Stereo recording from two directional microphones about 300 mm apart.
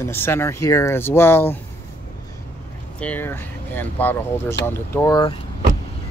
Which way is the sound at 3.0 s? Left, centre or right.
Centre.